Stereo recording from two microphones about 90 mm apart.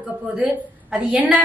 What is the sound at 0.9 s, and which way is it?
Speech, 15° right (ahead or behind).